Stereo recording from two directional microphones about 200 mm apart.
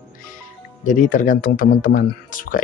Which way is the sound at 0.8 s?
40° left (ahead or behind).